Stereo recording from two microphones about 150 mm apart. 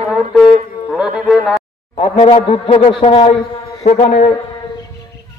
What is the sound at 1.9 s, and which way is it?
A man's voice, 35° left (ahead or behind).